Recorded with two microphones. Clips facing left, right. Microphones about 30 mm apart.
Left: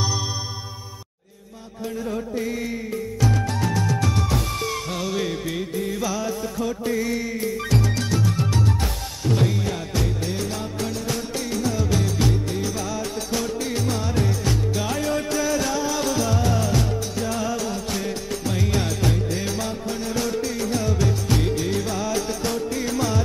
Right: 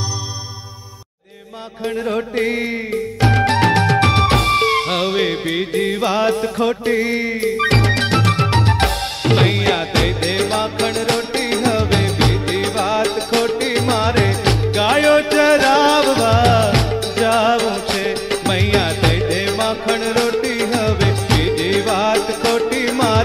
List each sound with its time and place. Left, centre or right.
2.0 s music: right